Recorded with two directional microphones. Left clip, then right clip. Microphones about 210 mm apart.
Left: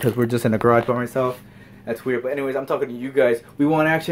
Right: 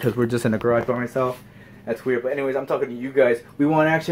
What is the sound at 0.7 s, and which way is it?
Speech, 45° left (ahead or behind).